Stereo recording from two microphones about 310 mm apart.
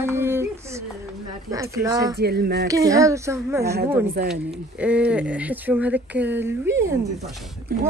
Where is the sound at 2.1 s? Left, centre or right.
Right.